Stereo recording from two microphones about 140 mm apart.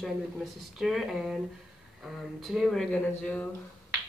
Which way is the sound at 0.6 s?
Centre (ahead or behind).